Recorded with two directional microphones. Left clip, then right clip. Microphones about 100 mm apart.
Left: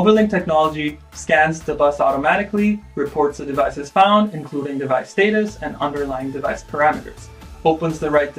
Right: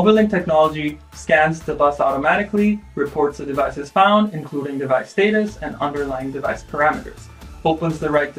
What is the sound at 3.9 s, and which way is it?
Speech, 20° left (ahead or behind).